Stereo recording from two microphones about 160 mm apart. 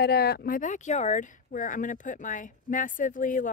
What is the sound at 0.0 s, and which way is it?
Speech, 85° left.